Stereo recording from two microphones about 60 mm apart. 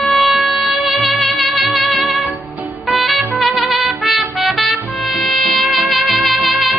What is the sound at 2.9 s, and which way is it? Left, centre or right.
Trumpet, centre.